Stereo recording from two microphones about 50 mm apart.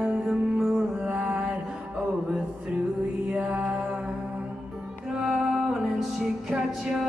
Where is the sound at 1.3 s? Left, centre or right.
Centre.